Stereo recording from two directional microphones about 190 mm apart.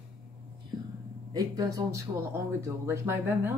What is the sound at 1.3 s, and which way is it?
Speech, 20° right (ahead or behind).